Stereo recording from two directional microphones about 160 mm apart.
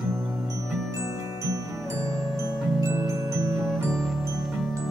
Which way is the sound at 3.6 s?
Centre (ahead or behind).